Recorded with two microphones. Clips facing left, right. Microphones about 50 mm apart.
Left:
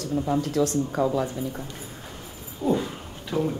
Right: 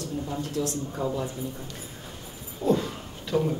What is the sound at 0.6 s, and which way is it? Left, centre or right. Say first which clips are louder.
Speech: left 6 dB; left.